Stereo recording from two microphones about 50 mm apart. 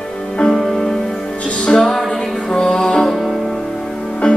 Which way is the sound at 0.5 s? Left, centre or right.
Centre.